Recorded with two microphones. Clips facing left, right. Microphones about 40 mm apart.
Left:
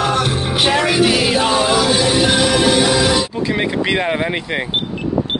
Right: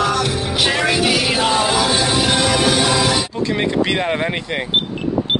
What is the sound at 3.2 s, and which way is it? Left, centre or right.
Speech, centre.